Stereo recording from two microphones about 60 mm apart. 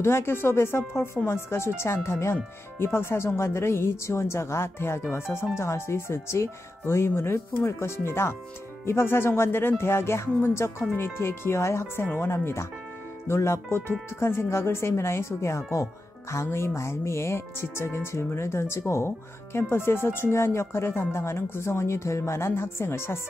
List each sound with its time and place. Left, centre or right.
0.0 s speech: left